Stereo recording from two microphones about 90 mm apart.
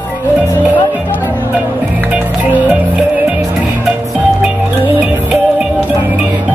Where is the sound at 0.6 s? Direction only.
20° right (ahead or behind).